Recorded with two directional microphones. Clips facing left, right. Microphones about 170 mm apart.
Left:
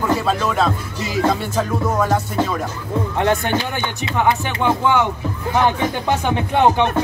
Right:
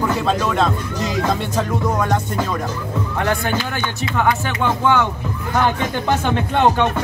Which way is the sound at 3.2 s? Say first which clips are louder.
Left 2 dB; 20° left (ahead or behind).